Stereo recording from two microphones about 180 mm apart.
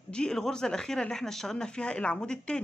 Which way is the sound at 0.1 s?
5° left (ahead or behind).